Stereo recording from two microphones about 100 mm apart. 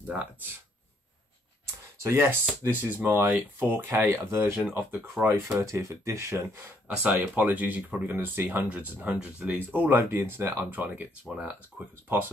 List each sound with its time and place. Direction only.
0.0 s speech: 15° right (ahead or behind)
2.0 s speech: 25° right (ahead or behind)
7.0 s speech: 15° right (ahead or behind)